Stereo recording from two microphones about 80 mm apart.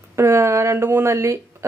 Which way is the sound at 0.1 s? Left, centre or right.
Right.